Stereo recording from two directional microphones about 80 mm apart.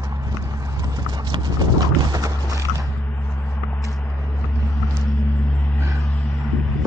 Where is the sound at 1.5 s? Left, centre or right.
Right.